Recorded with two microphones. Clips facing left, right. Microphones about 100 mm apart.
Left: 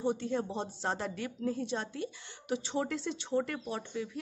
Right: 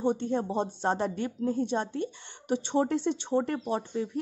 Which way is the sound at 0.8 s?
40° right (ahead or behind).